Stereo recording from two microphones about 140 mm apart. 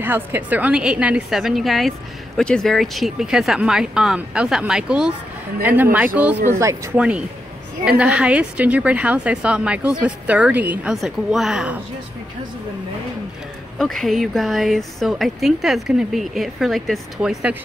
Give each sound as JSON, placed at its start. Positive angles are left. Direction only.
{"t": 0.0, "sound": "a woman's voice", "side_deg": -15}
{"t": 6.6, "sound": "speech", "side_deg": -20}
{"t": 7.0, "sound": "speech", "side_deg": -5}
{"t": 13.7, "sound": "a woman's voice", "side_deg": 0}